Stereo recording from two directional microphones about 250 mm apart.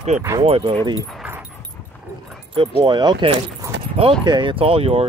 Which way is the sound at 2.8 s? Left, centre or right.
Centre.